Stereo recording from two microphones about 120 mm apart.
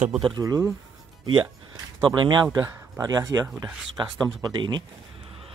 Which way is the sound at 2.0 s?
40° right (ahead or behind).